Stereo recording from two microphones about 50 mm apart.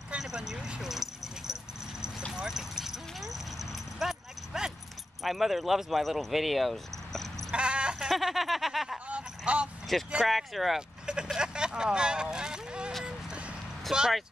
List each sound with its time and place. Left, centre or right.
0.2 s a sound: centre
1.5 s dog: centre
5.2 s speech: centre
7.5 s a sound: centre
8.1 s snicker: centre
9.0 s a sound: right
9.9 s speech: centre
11.3 s speech: centre
13.0 s vehicle: right
13.9 s speech: centre